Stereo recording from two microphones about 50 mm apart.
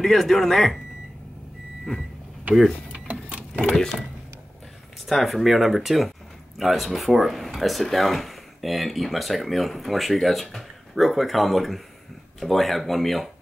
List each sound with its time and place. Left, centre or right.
0.0 s speech: centre
2.9 s a sound: right
3.7 s speech: centre
5.0 s speech: centre